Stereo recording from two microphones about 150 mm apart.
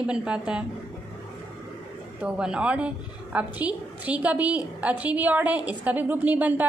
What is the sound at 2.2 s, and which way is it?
A woman's voice, 5° right (ahead or behind).